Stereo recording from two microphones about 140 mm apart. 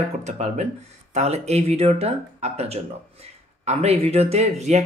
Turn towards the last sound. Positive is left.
turn(degrees=-50)  # may be behind; listen again after turning